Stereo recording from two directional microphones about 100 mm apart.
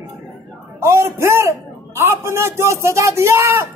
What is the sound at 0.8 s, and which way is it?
Speech, 25° right (ahead or behind).